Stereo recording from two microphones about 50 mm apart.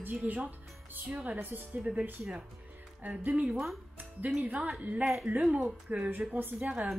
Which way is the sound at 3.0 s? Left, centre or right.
Right.